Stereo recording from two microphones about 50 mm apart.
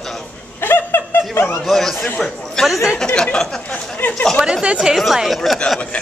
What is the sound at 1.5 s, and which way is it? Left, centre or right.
Speech, centre.